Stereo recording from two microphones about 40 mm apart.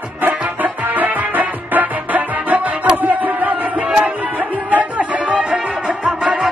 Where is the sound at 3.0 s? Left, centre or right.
Right.